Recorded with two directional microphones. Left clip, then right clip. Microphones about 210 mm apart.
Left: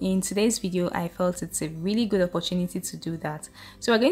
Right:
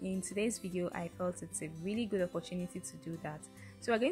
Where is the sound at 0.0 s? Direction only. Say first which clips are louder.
Left 12 dB; 15° right (ahead or behind).